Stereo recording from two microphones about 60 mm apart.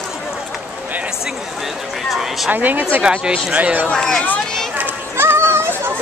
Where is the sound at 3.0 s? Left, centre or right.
Centre.